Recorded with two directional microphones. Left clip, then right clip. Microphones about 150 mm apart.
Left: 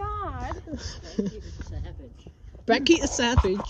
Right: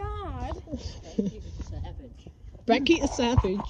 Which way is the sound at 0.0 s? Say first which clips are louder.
Left 5 dB; 20° right (ahead or behind).